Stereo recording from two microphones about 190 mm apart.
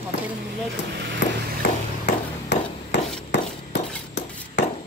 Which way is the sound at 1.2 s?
65° left (ahead or behind).